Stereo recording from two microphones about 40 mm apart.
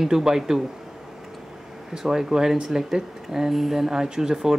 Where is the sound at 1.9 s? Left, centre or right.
Centre.